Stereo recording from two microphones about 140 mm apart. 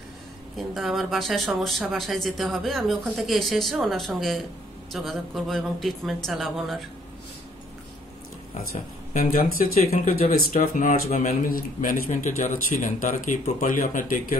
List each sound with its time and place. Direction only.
0.6 s speech: centre (ahead or behind)
9.1 s speech: 85° left
11.1 s speech: 65° left (ahead or behind); by 12.0 s 80° left
12.1 s speech: 65° left (ahead or behind)